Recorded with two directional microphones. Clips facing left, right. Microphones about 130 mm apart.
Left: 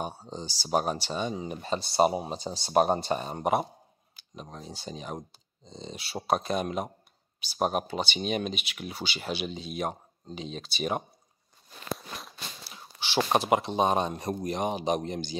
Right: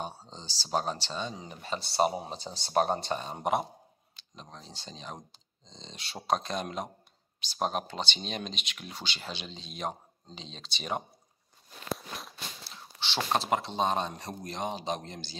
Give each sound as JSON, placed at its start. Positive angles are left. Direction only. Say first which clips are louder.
{"t": 0.0, "sound": "speech", "louder": "left 4 dB", "side_deg": 15}
{"t": 11.9, "sound": "a sound", "louder": "even", "side_deg": 0}
{"t": 12.6, "sound": "speech", "louder": "even", "side_deg": 10}